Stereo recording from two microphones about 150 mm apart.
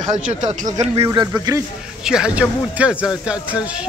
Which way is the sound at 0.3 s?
50° right (ahead or behind).